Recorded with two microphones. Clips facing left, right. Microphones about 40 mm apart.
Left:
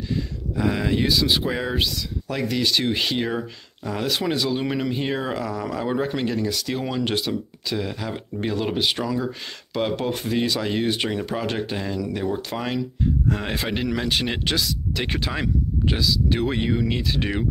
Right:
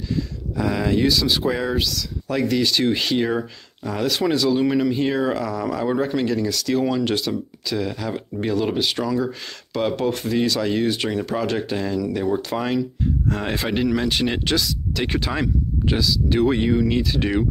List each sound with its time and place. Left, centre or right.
0.1 s speech: centre
1.8 s speech: left
2.2 s speech: centre
6.0 s speech: centre
8.9 s speech: centre
12.3 s speech: centre
14.0 s speech: centre